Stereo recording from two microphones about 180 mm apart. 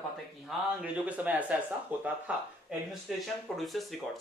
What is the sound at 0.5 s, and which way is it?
A man's voice, centre (ahead or behind).